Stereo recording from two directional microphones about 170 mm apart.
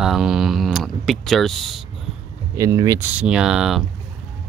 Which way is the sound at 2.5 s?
20° right (ahead or behind).